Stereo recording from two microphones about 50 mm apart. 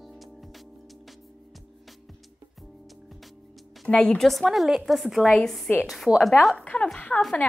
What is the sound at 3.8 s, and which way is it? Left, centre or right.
Speech, left.